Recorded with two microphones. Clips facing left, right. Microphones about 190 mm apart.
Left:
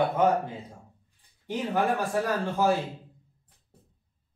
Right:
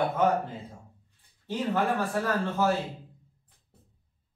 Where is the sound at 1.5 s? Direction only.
15° left (ahead or behind).